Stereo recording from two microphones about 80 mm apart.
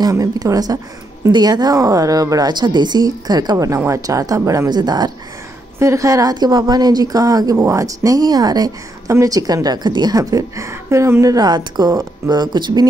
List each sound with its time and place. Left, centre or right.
0.2 s a woman's voice: right
2.5 s a woman's voice: right
4.7 s speech: right
5.8 s a woman's voice: right
11.3 s speech: right